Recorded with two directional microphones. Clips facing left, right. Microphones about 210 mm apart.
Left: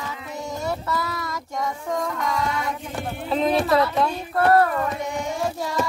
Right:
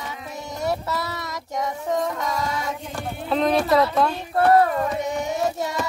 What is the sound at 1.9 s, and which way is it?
Music, 25° right (ahead or behind).